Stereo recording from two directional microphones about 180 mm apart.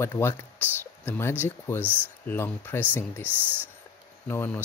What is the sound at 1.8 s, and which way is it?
Speech, 10° right (ahead or behind).